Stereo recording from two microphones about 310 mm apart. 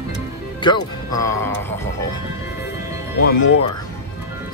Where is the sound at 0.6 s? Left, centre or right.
Centre.